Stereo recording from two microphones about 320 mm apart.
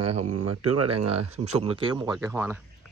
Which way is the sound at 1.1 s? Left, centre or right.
Centre.